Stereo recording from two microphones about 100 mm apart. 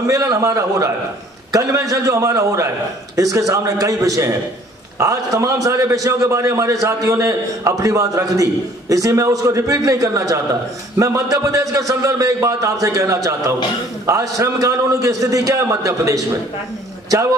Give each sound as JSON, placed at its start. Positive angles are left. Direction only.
{"t": 0.0, "sound": "a man's voice", "side_deg": -35}